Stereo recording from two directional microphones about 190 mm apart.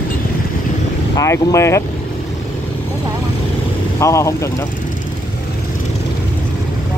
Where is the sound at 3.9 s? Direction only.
15° left (ahead or behind).